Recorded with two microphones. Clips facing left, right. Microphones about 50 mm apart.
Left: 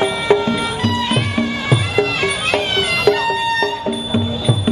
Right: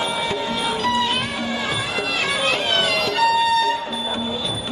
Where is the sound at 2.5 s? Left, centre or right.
Centre.